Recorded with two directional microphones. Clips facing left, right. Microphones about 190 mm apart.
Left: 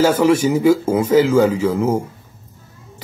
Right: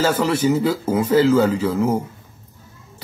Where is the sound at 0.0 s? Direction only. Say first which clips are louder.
Left 4 dB; 10° left (ahead or behind).